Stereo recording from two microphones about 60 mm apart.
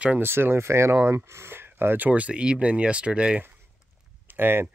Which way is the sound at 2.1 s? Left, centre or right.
Right.